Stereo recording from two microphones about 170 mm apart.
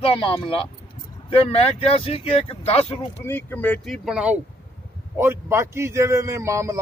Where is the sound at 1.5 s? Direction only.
35° left (ahead or behind).